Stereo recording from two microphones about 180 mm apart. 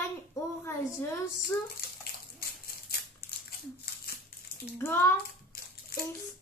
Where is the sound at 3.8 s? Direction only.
55° left (ahead or behind).